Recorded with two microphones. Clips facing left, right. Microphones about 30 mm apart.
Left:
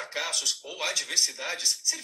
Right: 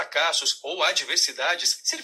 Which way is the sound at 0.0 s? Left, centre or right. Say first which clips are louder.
Right 7 dB; right.